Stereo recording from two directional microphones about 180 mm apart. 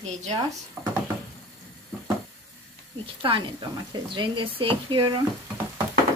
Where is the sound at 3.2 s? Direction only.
25° right (ahead or behind).